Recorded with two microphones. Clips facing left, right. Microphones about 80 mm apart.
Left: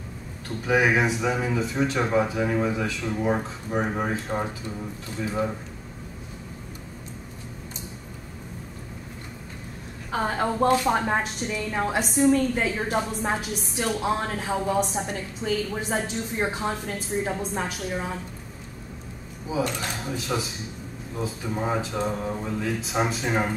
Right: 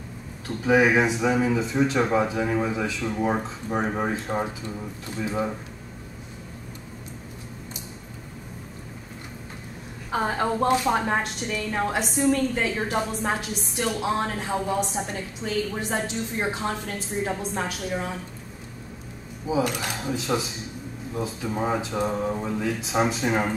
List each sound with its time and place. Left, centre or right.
0.7 s a woman's voice: centre
10.1 s a woman's voice: centre
19.5 s a woman's voice: centre